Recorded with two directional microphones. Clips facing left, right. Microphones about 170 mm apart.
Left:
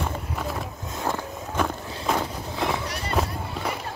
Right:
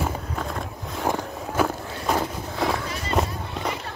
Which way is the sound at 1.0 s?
10° right (ahead or behind).